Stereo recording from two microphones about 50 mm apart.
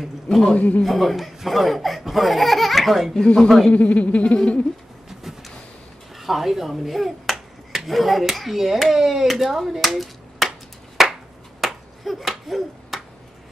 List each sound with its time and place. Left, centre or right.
0.0 s a man's voice: centre
0.6 s speech: left
0.8 s speech: centre
3.7 s speech: left
6.1 s speech: centre
11.0 s chop: centre
11.6 s finger snapping: centre